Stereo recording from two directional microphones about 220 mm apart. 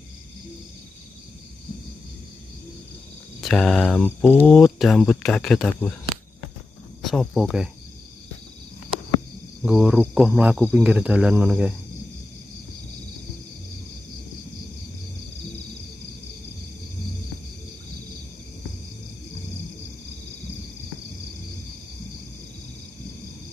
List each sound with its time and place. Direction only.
3.3 s mantra: centre (ahead or behind)
4.5 s speech: centre (ahead or behind)
7.0 s speech: centre (ahead or behind)
9.6 s speech: centre (ahead or behind)